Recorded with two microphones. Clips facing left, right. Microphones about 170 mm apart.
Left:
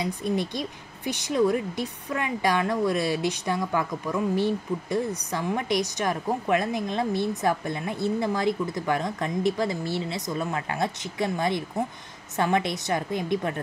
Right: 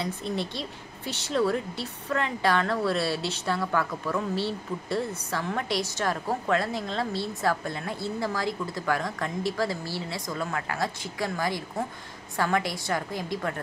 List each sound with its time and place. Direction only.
0.0 s a woman's voice: 15° left (ahead or behind)